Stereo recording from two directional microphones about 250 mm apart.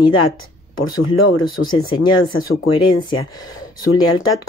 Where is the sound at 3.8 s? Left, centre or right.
Left.